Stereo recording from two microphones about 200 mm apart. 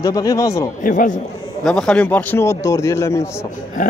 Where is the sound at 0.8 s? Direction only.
40° left (ahead or behind).